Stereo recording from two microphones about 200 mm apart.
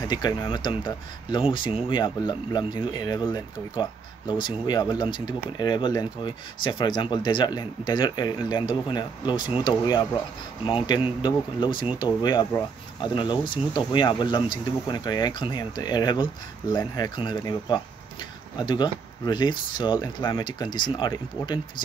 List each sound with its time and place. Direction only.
0.1 s speech: 20° left (ahead or behind)